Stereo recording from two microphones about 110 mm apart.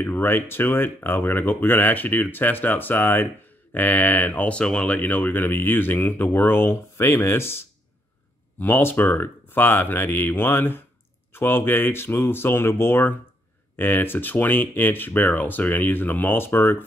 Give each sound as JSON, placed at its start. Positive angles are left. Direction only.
{"t": 0.0, "sound": "speech", "side_deg": 20}